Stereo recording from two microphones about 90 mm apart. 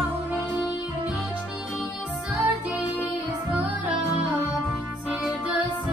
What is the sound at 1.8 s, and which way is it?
Music, 5° right (ahead or behind).